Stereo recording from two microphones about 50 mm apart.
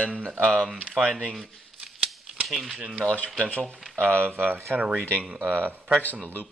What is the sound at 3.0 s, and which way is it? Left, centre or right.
Speech, left.